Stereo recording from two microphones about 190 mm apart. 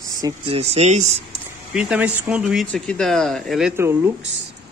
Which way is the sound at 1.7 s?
5° right (ahead or behind).